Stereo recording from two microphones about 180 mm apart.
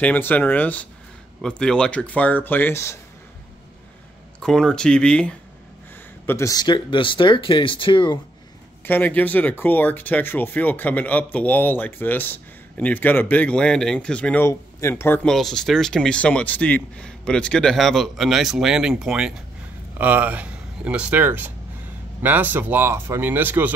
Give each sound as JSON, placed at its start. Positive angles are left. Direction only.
{"t": 0.0, "sound": "speech", "side_deg": 10}
{"t": 4.4, "sound": "speech", "side_deg": 5}
{"t": 6.2, "sound": "speech", "side_deg": 15}
{"t": 8.8, "sound": "speech", "side_deg": 10}